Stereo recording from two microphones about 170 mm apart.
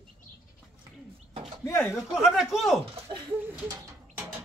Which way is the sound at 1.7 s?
15° left (ahead or behind).